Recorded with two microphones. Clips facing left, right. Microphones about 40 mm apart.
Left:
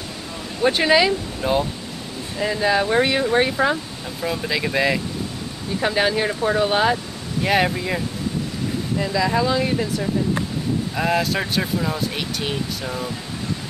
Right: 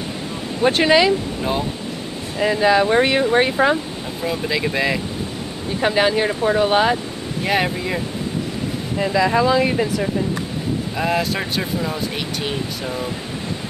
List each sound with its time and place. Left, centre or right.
0.7 s speech: centre
2.3 s speech: centre
3.7 s speech: centre
8.9 s speech: right
11.0 s speech: centre